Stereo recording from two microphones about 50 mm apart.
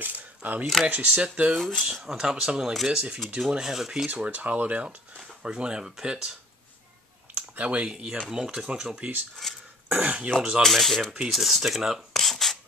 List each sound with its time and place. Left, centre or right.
0.0 s a sound: right
0.8 s speech: right
1.6 s speech: centre
2.1 s speech: centre
4.1 s speech: right; by 6.3 s centre
7.3 s speech: right; by 9.0 s centre
9.4 s a sound: centre
10.0 s speech: right
10.6 s speech: centre
11.9 s rub: centre